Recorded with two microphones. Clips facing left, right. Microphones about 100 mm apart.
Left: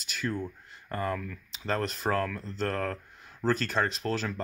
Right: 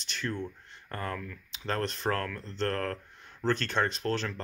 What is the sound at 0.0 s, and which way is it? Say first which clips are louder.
Speech: left 2 dB; 5° left (ahead or behind).